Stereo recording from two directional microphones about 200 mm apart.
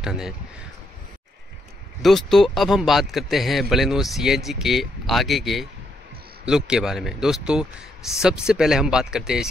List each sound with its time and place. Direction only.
0.0 s speech: 5° right (ahead or behind)
2.0 s speech: centre (ahead or behind)